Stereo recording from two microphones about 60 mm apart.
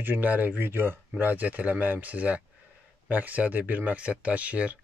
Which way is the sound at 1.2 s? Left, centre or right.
Right.